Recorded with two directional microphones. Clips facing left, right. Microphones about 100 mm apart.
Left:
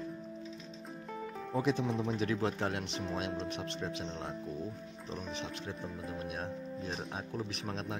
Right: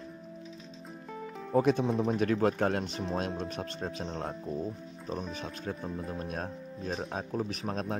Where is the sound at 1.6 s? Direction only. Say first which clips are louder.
Right 6 dB; 55° right (ahead or behind).